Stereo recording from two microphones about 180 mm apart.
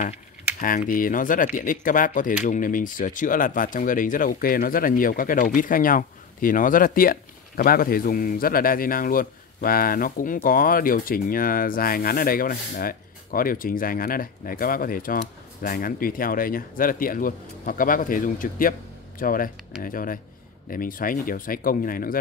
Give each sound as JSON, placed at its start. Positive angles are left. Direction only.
{"t": 0.6, "sound": "speech", "side_deg": 50}